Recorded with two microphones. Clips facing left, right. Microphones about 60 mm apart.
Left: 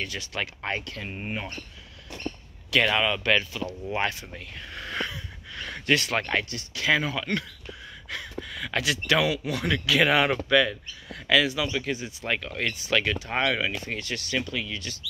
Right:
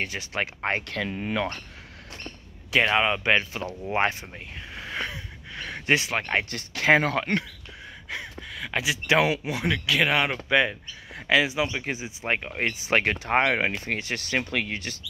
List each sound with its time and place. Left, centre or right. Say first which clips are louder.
0.1 s speech: right 3 dB; right
0.9 s speech: right 6 dB; right
2.7 s speech: right 1 dB; right
4.3 s speech: even; centre
6.5 s speech: right 7 dB; right
8.1 s a sound: right 2 dB; centre
8.5 s speech: even; centre
9.8 s speech: left 3 dB; centre
10.5 s speech: left 1 dB; right
13.0 s speech: right 4 dB; right
13.4 s speech: right 1 dB; right